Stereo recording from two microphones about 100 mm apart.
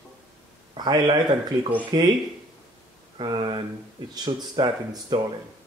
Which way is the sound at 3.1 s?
55° right (ahead or behind).